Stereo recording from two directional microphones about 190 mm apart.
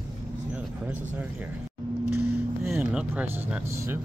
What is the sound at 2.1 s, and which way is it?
Music, 5° right (ahead or behind).